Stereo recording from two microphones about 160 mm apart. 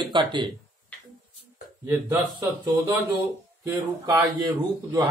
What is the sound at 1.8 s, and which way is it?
Speech, 15° right (ahead or behind).